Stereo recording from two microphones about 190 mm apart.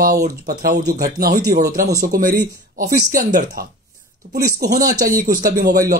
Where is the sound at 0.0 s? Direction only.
50° right (ahead or behind).